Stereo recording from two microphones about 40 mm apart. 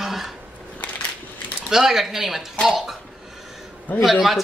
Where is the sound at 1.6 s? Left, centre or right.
Centre.